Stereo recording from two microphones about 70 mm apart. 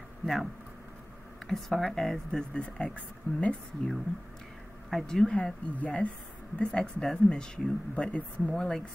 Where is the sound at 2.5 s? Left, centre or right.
Centre.